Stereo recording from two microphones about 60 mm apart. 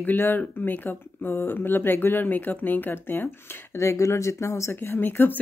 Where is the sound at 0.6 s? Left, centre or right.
Left.